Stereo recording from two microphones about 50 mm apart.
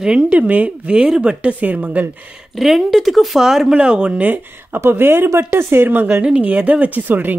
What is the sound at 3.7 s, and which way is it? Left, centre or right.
Speech, centre.